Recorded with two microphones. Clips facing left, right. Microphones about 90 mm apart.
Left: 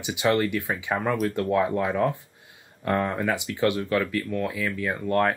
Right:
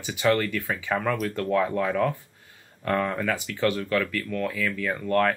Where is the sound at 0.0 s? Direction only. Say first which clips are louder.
Even; 15° left (ahead or behind).